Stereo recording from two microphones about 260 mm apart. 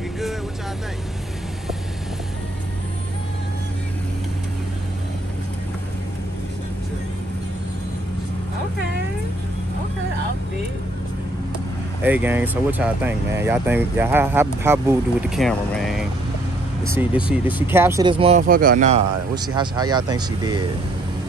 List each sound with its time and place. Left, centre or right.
12.0 s speech: centre
18.5 s speech: right
19.3 s speech: centre